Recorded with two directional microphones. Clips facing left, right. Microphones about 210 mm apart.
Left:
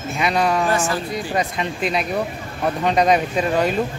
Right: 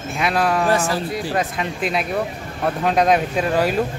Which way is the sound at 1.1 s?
Centre (ahead or behind).